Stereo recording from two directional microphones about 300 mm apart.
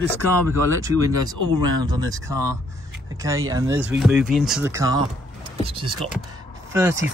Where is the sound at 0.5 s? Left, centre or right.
Centre.